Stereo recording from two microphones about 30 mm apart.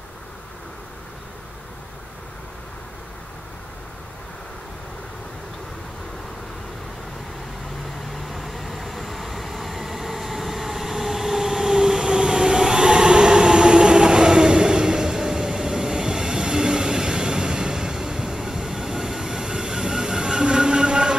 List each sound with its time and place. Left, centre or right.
8.1 s train: centre; by 21.2 s right